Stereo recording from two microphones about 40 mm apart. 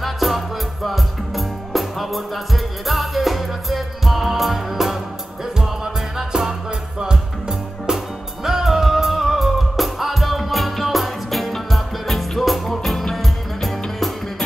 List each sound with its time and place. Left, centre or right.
0.0 s music: centre
6.1 s music: centre